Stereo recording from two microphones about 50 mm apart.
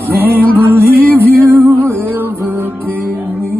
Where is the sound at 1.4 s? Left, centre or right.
Right.